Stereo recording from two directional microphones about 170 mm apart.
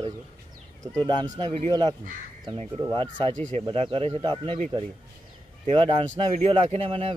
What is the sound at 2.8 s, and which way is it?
Speech, 30° right (ahead or behind).